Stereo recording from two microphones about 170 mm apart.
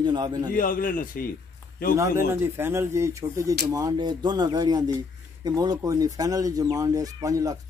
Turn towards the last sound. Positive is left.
turn(degrees=-20)  # may be behind; listen again after turning